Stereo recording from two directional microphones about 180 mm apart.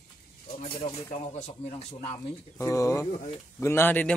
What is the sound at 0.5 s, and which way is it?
Speech, 35° left (ahead or behind).